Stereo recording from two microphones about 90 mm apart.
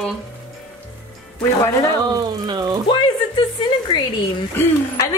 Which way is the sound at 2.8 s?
60° left (ahead or behind).